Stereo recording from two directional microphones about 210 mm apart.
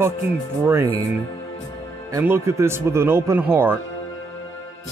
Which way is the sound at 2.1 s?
10° right (ahead or behind).